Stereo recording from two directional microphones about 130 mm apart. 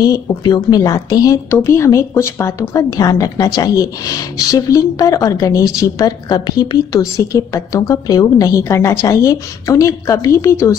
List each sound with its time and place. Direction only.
0.0 s a woman's voice: 30° left (ahead or behind)